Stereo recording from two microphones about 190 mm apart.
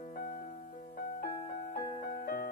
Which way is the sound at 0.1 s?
50° left (ahead or behind).